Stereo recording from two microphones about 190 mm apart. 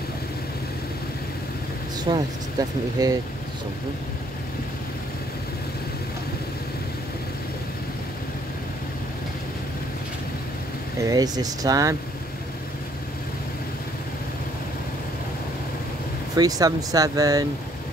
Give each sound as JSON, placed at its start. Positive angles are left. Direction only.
{"t": 2.1, "sound": "speech", "side_deg": -20}
{"t": 11.0, "sound": "speech", "side_deg": -20}
{"t": 16.3, "sound": "speech", "side_deg": -20}